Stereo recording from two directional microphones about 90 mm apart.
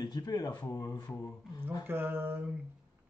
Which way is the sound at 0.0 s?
50° left (ahead or behind).